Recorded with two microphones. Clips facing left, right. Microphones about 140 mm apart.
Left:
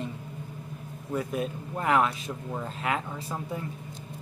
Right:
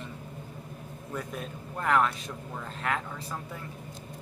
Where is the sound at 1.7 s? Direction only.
10° left (ahead or behind).